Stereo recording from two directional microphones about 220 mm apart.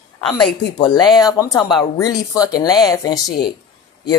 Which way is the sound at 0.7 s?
20° left (ahead or behind).